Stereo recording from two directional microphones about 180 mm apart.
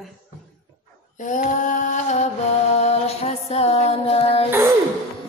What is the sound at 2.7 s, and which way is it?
Music, 35° left (ahead or behind).